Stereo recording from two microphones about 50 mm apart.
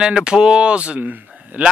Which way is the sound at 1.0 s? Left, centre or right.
Right.